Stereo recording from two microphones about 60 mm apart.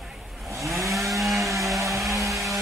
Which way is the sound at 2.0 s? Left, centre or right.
Centre.